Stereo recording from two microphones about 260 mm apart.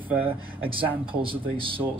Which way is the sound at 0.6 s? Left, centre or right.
Centre.